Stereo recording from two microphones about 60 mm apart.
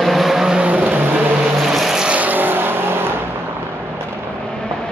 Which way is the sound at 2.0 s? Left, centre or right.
Right.